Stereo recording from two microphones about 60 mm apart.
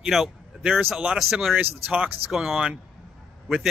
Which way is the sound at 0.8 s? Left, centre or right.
Right.